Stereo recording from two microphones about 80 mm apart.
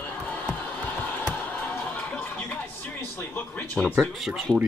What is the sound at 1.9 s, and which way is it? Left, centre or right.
Music, centre.